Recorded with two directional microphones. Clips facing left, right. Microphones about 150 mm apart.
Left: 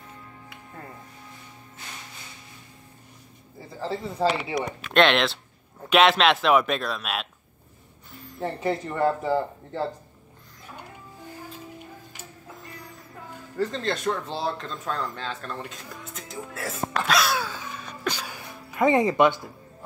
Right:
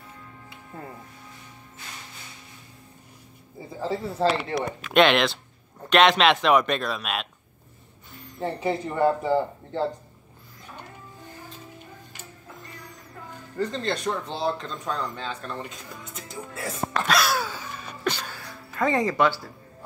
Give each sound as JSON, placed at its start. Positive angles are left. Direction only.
{"t": 3.7, "sound": "speech", "side_deg": -15}
{"t": 4.0, "sound": "speech", "side_deg": 0}
{"t": 12.6, "sound": "music", "side_deg": 0}
{"t": 13.6, "sound": "speech", "side_deg": 0}
{"t": 17.0, "sound": "a sound", "side_deg": 0}
{"t": 18.1, "sound": "music", "side_deg": 10}
{"t": 18.4, "sound": "speech", "side_deg": 20}